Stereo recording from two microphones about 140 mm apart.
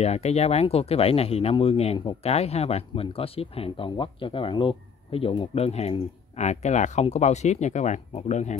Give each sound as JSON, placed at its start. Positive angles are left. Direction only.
{"t": 0.0, "sound": "speech", "side_deg": 50}